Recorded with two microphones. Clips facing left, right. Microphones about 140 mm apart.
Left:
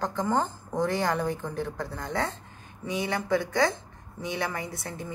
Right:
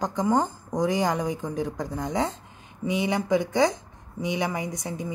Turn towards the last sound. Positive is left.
turn(degrees=-15)  # may be behind; listen again after turning